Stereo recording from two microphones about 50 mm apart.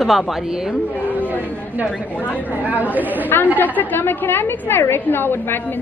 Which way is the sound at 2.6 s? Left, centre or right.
Right.